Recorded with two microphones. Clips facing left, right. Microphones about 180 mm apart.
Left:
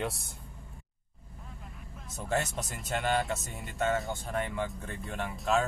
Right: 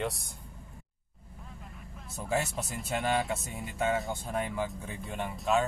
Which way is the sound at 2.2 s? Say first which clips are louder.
Even; 5° right (ahead or behind).